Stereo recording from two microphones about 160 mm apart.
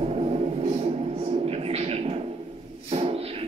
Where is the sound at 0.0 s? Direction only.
40° right (ahead or behind).